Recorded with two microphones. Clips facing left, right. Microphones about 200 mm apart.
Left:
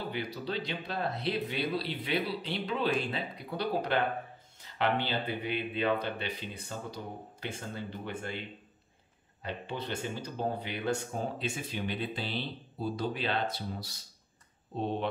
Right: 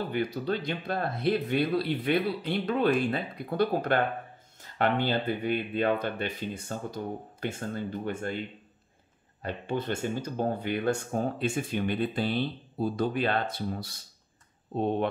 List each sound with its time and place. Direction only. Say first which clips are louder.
0.1 s speech: right 6 dB; 50° right (ahead or behind)
9.4 s speech: right 6 dB; 50° right (ahead or behind)